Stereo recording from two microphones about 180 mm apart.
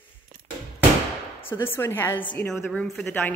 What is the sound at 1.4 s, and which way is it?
A woman's voice, 10° left (ahead or behind).